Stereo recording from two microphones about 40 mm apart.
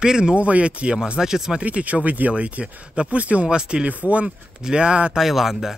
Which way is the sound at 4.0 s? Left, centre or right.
Right.